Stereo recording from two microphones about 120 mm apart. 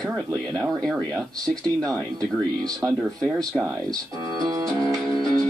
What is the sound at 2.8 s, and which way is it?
Speech, 15° right (ahead or behind).